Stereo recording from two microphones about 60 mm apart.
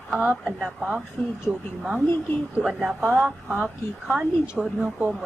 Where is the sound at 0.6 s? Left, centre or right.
Centre.